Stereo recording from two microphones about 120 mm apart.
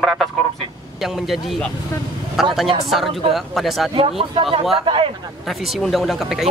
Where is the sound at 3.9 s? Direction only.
50° right (ahead or behind).